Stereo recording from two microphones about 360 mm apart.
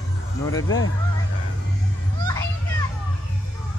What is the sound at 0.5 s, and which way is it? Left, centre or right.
Speech, left.